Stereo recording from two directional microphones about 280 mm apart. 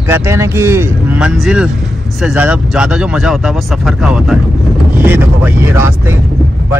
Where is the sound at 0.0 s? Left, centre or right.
Centre.